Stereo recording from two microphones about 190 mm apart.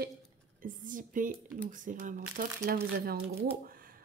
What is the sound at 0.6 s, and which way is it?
Speech, 45° right (ahead or behind).